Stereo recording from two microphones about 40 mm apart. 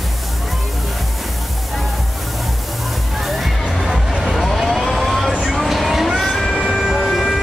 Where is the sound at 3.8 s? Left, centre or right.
Centre.